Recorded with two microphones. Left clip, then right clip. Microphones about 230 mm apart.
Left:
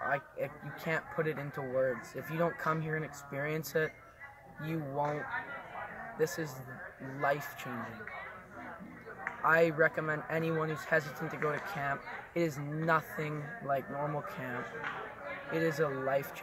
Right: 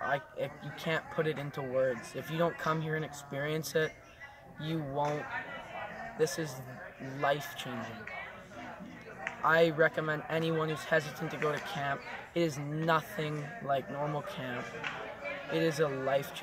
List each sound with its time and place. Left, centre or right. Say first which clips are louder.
0.0 s speech: right 1 dB; centre
9.4 s speech: right 1 dB; centre
14.6 s music: even; right
15.5 s a man's voice: right 1 dB; centre